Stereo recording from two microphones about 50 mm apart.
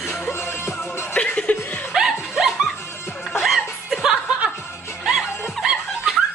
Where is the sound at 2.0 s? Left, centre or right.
Centre.